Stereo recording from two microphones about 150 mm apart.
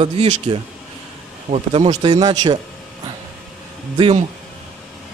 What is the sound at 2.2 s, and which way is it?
Speech, 25° right (ahead or behind).